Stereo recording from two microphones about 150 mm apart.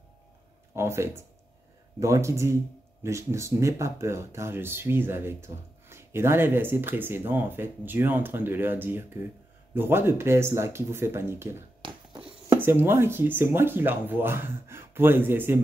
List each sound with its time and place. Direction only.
0.7 s speech: 15° right (ahead or behind)
11.8 s a sound: 35° right (ahead or behind)
12.2 s speech: 15° right (ahead or behind)